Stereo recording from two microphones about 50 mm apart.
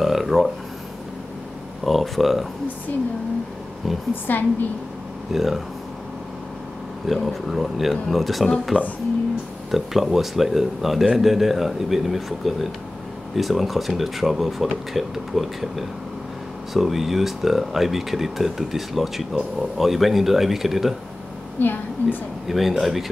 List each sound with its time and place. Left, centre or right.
0.0 s speech: centre
1.9 s speech: centre
4.1 s a woman's voice: left
5.3 s speech: centre
7.1 s speech: centre
8.7 s speech: left
9.7 s speech: centre
21.5 s a woman's voice: left
22.5 s speech: centre